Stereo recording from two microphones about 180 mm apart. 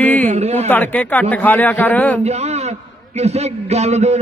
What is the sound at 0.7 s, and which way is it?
A man's voice, 10° left (ahead or behind).